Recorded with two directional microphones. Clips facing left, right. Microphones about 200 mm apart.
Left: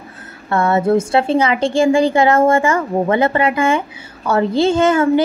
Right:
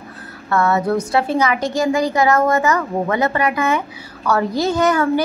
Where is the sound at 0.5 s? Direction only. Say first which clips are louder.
Left 3 dB; 25° left (ahead or behind).